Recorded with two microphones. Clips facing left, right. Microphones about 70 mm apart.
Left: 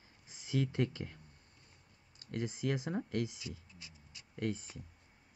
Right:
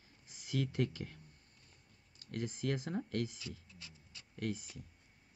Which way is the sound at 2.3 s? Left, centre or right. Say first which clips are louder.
Left 2 dB; centre.